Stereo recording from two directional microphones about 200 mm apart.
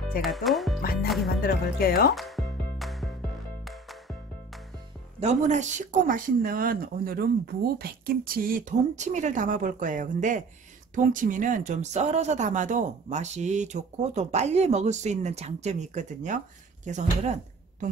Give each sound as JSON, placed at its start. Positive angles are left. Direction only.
{"t": 0.2, "sound": "speech", "side_deg": 0}
{"t": 1.4, "sound": "speech", "side_deg": 50}
{"t": 2.1, "sound": "music", "side_deg": 0}
{"t": 5.2, "sound": "speech", "side_deg": -35}